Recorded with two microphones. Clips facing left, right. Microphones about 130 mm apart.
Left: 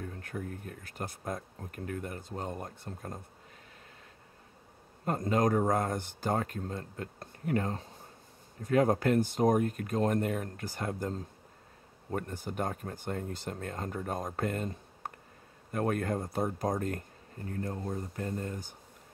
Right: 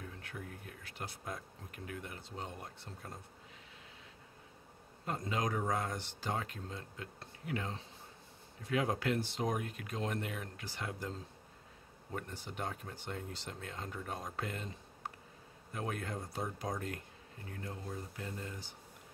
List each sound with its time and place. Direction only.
0.0 s speech: 45° left (ahead or behind)
5.0 s speech: 45° left (ahead or behind)